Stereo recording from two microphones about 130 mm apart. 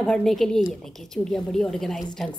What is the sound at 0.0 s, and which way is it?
A woman's voice, 5° left (ahead or behind).